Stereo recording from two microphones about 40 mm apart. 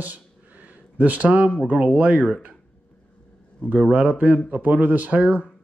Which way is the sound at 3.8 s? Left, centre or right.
Right.